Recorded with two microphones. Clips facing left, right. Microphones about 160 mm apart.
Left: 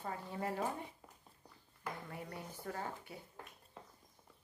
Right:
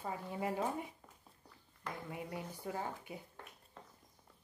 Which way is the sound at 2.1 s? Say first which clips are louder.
Right 3 dB; 15° right (ahead or behind).